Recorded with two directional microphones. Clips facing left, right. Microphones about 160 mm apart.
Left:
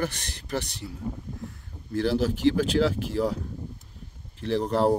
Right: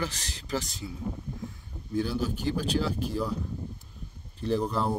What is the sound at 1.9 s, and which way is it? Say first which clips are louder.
Speech: left 4 dB; 85° left.